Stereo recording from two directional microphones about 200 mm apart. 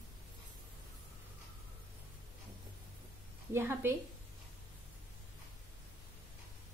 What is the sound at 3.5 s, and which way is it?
Speech, 10° right (ahead or behind).